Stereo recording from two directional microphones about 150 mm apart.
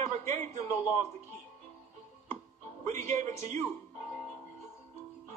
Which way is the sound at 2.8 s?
55° right (ahead or behind).